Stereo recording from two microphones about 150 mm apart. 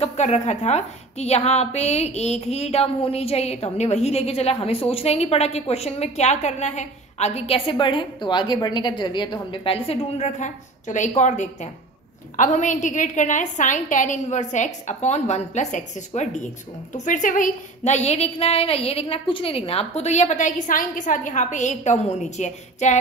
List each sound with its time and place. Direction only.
0.0 s a woman's voice: 50° left (ahead or behind)
16.9 s a woman's voice: 60° left (ahead or behind)